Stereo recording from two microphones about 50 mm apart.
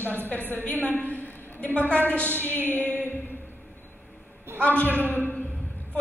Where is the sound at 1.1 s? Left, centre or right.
Left.